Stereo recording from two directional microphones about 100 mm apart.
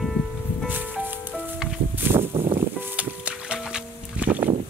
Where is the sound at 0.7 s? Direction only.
20° right (ahead or behind).